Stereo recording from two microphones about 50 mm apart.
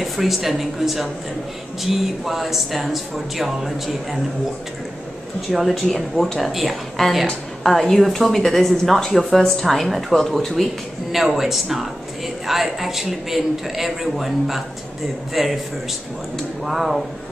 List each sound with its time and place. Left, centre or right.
0.0 s a woman's voice: centre
5.5 s a woman's voice: centre
16.6 s a woman's voice: centre